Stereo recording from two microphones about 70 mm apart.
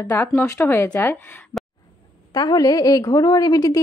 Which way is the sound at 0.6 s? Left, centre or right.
Left.